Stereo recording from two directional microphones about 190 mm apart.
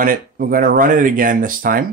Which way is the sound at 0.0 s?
45° right (ahead or behind).